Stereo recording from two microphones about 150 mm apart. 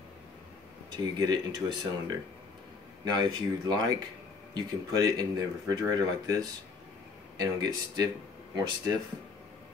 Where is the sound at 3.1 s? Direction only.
25° right (ahead or behind).